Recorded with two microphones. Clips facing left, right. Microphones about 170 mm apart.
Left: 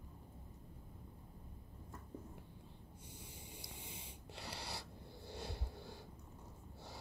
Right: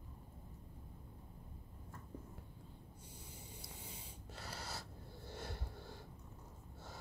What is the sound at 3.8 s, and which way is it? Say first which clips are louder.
Snort: even; 15° left (ahead or behind).